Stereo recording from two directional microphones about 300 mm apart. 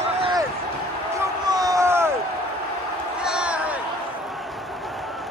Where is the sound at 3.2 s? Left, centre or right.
Centre.